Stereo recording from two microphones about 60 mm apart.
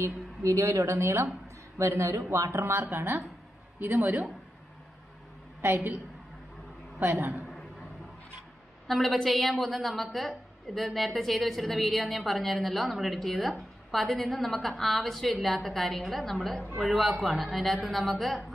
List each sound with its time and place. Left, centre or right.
0.0 s a woman's voice: right
3.8 s a woman's voice: right
7.0 s a woman's voice: right
8.8 s a woman's voice: centre